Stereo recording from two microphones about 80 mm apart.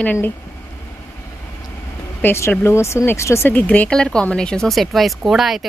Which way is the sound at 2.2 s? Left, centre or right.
Left.